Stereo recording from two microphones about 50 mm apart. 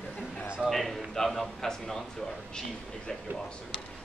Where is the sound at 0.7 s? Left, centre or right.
Centre.